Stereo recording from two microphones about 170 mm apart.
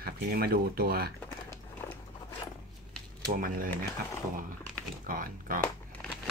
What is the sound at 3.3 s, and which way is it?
Speech, 55° right (ahead or behind).